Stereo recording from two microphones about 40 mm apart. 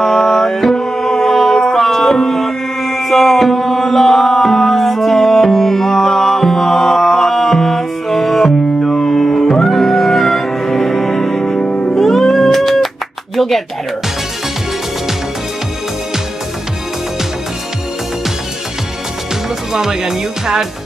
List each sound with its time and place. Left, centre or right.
0.0 s music: centre
12.4 s cat: centre
19.7 s speech: centre